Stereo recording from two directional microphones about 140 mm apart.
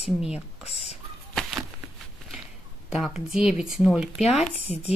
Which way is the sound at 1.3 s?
Centre (ahead or behind).